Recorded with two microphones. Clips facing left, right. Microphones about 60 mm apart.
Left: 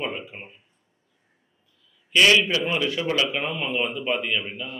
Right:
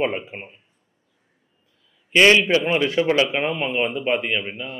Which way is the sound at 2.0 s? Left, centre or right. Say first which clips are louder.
Right 3 dB; right.